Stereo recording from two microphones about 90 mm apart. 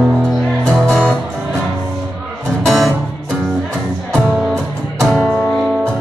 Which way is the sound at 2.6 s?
Centre (ahead or behind).